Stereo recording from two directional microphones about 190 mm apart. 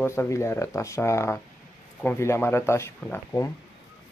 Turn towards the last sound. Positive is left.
turn(degrees=15)  # may be behind; listen again after turning